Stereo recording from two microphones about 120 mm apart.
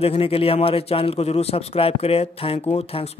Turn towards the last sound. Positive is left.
turn(degrees=55)  # may be behind; listen again after turning